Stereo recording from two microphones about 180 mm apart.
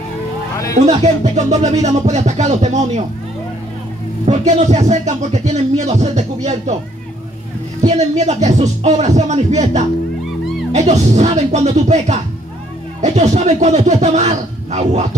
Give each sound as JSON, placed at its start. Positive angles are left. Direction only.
{"t": 0.8, "sound": "speech", "side_deg": -40}
{"t": 4.3, "sound": "speech", "side_deg": -40}
{"t": 7.8, "sound": "speech", "side_deg": -40}